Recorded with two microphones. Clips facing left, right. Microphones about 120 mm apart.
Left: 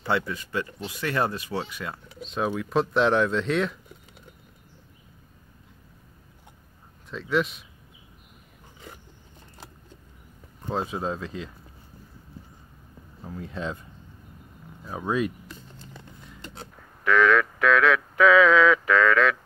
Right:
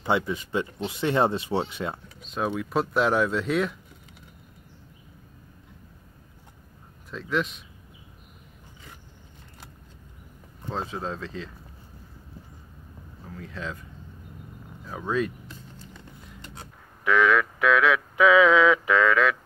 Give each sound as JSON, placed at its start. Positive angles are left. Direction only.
{"t": 0.0, "sound": "speech", "side_deg": -20}
{"t": 2.2, "sound": "speech", "side_deg": 0}
{"t": 7.1, "sound": "speech", "side_deg": 0}
{"t": 10.7, "sound": "speech", "side_deg": 10}
{"t": 13.3, "sound": "speech", "side_deg": 20}
{"t": 14.9, "sound": "speech", "side_deg": 15}
{"t": 17.0, "sound": "speech", "side_deg": -10}